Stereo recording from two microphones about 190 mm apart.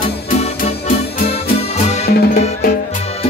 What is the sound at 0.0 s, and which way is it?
Music, 45° left (ahead or behind).